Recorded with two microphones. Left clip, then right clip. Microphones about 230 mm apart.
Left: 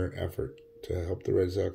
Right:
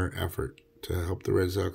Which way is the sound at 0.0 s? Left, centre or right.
Right.